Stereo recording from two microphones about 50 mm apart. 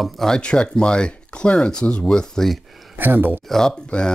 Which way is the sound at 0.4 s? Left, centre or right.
Centre.